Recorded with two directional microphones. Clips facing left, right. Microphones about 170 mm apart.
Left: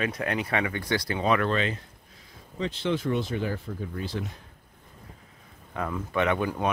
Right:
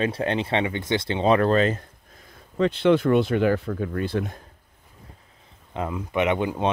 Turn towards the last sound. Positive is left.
turn(degrees=-20)  # may be behind; listen again after turning